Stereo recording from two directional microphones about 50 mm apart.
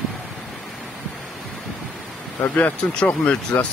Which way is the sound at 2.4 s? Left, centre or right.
Left.